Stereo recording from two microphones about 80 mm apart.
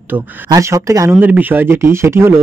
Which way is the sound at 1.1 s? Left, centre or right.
Right.